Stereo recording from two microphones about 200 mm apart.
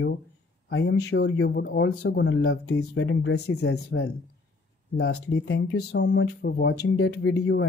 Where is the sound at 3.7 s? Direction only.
55° left (ahead or behind).